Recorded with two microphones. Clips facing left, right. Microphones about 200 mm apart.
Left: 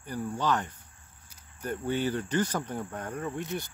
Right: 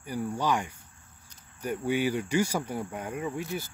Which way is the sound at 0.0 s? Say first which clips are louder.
Right 1 dB; 10° right (ahead or behind).